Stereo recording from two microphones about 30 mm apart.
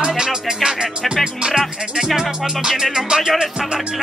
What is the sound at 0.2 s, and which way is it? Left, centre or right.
Music, right.